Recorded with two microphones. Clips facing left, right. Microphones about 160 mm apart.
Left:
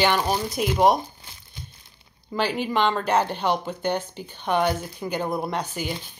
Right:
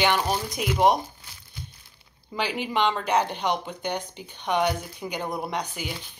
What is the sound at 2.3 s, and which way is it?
Speech, 50° left (ahead or behind).